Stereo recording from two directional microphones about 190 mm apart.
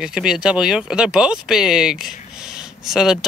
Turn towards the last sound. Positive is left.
turn(degrees=-5)  # may be behind; listen again after turning